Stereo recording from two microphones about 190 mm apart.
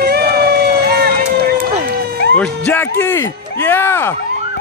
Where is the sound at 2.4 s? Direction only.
10° left (ahead or behind).